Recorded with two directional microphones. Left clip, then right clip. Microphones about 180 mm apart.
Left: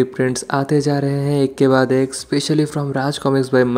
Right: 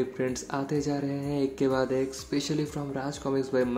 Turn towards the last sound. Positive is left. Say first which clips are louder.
# left 12 dB
turn(degrees=50)  # may be behind; listen again after turning